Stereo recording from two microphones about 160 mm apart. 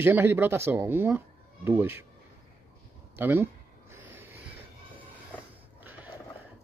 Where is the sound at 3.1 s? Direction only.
15° right (ahead or behind).